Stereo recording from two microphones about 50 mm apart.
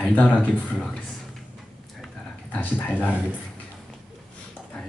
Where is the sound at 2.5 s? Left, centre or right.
Left.